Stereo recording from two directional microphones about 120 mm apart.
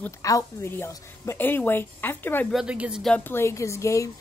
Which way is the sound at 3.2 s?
20° left (ahead or behind).